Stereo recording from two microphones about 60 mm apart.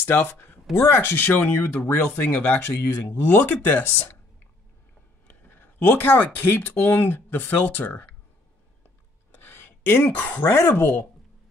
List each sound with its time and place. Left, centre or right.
0.0 s speech: left
3.1 s speech: left
5.3 s speech: left
9.3 s speech: left
10.8 s speech: left